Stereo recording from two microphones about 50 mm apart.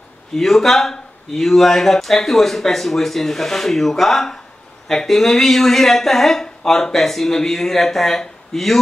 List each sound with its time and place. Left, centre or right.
0.3 s speech: centre